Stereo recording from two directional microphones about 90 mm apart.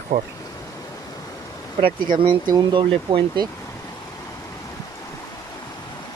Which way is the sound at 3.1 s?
80° right.